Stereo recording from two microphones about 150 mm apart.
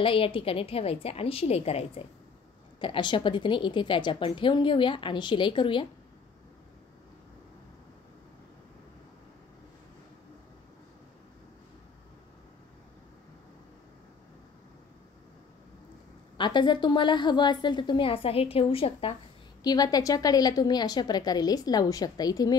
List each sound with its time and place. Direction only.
0.0 s a woman's voice: 35° left (ahead or behind)
2.8 s a woman's voice: 30° left (ahead or behind)
16.3 s a woman's voice: 30° left (ahead or behind)
19.6 s a woman's voice: 25° left (ahead or behind)